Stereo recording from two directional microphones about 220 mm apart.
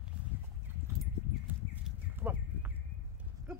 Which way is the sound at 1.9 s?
10° right (ahead or behind).